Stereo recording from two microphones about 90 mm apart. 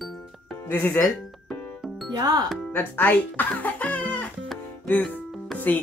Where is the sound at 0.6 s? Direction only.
20° left (ahead or behind).